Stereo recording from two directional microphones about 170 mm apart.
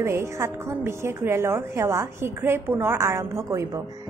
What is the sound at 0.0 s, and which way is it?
A woman's voice, 15° right (ahead or behind).